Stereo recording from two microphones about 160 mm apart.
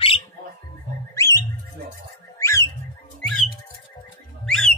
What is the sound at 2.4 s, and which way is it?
Bird, 20° left (ahead or behind).